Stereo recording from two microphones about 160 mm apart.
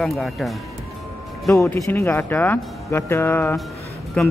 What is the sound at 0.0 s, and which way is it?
Speech, centre (ahead or behind).